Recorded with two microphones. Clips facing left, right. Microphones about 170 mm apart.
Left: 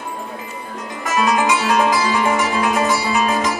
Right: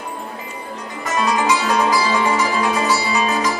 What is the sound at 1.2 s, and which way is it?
Music, 50° left (ahead or behind).